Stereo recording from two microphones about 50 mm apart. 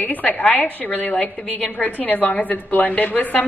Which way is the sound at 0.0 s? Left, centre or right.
Left.